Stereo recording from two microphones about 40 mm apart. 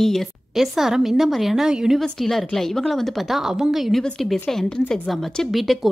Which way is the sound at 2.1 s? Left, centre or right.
Centre.